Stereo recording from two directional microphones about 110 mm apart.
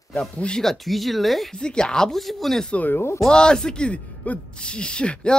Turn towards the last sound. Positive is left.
turn(degrees=10)  # may be behind; listen again after turning